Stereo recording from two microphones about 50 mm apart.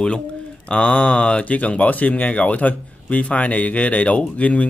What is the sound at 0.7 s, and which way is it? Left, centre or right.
A man's voice, left.